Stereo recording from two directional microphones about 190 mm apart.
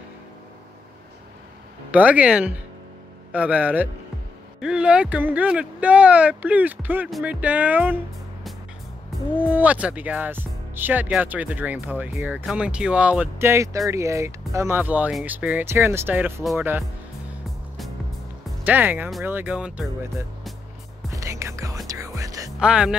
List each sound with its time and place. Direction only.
1.9 s speech: 5° right (ahead or behind)
9.4 s speech: 10° right (ahead or behind)
18.7 s speech: 10° right (ahead or behind)
21.1 s music: 15° right (ahead or behind)
22.6 s speech: 5° right (ahead or behind)